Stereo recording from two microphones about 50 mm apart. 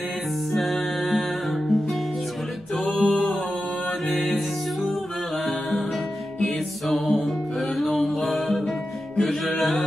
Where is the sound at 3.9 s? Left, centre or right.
Centre.